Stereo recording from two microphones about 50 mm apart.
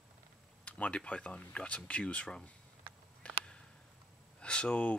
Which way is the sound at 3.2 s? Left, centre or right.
Left.